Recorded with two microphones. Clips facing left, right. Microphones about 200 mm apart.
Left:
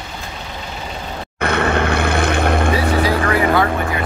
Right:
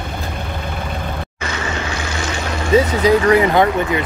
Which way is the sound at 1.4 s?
60° left (ahead or behind).